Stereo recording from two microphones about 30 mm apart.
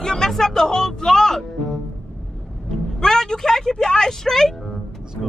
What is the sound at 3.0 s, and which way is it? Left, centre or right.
Speech, centre.